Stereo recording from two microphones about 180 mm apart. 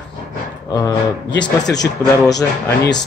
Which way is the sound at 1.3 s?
80° left.